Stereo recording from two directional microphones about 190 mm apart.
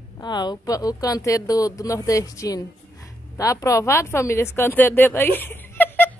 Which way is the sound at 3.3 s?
15° left (ahead or behind).